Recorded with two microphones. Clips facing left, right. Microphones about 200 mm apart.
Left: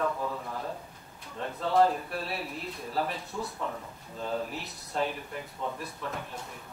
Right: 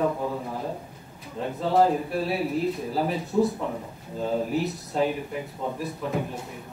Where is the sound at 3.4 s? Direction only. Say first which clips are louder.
Right 11 dB; 15° right (ahead or behind).